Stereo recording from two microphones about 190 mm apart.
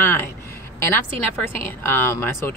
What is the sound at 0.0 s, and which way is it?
A woman's voice, 10° left (ahead or behind).